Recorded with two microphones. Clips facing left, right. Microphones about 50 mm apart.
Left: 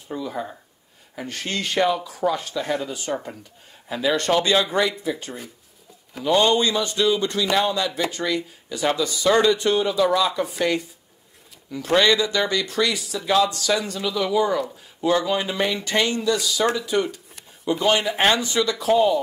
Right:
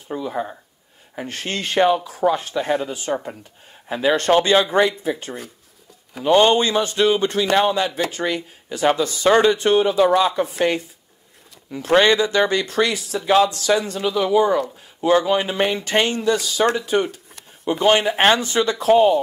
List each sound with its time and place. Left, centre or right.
0.2 s speech: right
11.8 s speech: right